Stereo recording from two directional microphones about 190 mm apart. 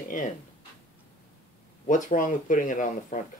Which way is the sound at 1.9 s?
45° left (ahead or behind).